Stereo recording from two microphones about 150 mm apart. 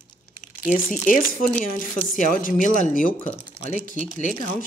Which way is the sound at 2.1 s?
60° left (ahead or behind).